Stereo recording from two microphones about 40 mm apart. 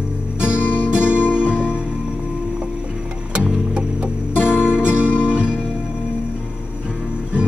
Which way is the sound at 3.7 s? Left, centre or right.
Right.